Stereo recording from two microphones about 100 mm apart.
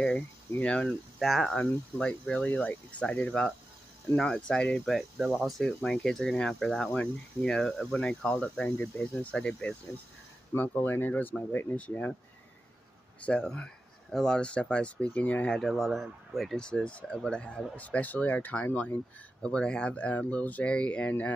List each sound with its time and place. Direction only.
0.6 s speech: 10° left (ahead or behind)
0.8 s speech: centre (ahead or behind)
4.8 s speech: centre (ahead or behind); by 12.2 s 15° left (ahead or behind)
13.2 s speech: 10° left (ahead or behind)